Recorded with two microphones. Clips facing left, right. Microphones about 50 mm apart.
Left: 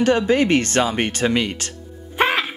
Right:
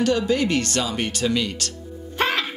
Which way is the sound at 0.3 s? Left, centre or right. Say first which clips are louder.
Left 4 dB; left.